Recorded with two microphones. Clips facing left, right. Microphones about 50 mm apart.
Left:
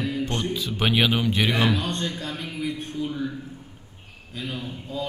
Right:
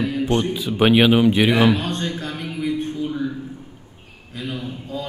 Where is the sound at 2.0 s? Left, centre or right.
Right.